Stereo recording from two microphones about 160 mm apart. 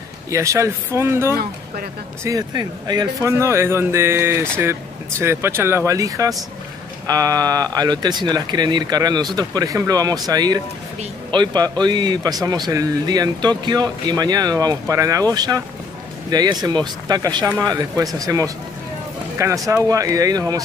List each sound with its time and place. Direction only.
0.3 s speech: 20° right (ahead or behind)